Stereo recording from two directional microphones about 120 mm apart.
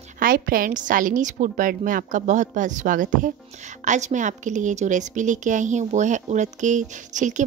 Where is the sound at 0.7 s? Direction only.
90° right.